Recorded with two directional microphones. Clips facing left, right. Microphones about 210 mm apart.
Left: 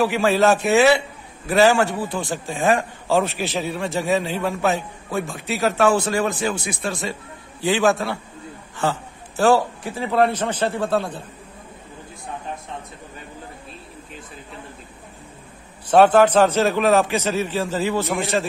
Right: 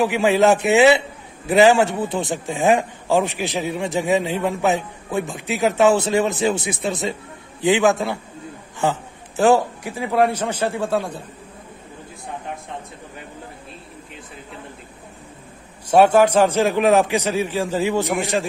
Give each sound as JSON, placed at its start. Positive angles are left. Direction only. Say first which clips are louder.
{"t": 0.0, "sound": "a man's voice", "louder": "right 1 dB", "side_deg": -15}
{"t": 15.9, "sound": "a man's voice", "louder": "even", "side_deg": -10}